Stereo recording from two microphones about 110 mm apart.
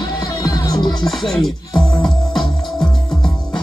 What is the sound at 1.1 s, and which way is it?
Music, centre (ahead or behind).